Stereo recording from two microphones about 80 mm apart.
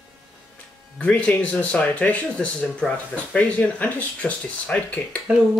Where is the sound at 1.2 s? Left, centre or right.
Centre.